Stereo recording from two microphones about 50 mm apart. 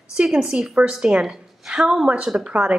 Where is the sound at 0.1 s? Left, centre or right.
Centre.